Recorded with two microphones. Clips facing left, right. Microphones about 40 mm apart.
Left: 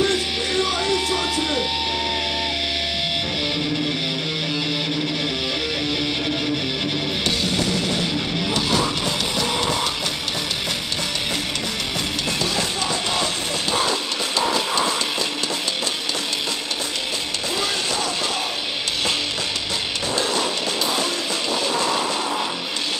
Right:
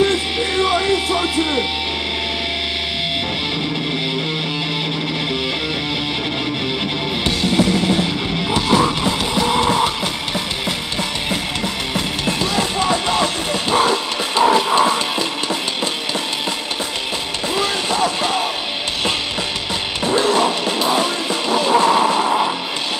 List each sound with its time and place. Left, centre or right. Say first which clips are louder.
0.0 s music: right 4 dB; right
7.5 s music: right 6 dB; right
12.5 s music: right 6 dB; right
20.2 s music: right 8 dB; right